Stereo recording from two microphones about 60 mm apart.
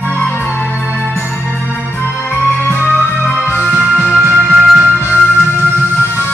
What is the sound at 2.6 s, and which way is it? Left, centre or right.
Music, left.